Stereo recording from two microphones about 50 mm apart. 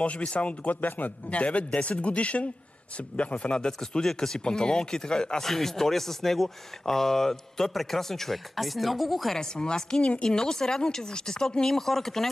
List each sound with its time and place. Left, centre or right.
0.0 s a man's voice: left; by 9.4 s centre
9.4 s speech: centre